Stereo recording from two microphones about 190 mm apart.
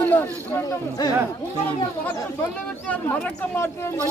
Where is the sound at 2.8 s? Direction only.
10° left (ahead or behind).